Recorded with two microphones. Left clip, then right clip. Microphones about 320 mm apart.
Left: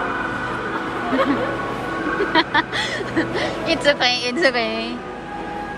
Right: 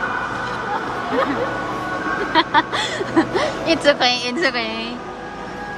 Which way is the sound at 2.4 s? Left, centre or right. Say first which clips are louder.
Right 3 dB; centre.